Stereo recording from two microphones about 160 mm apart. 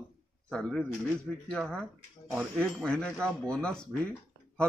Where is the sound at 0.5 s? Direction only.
5° left (ahead or behind).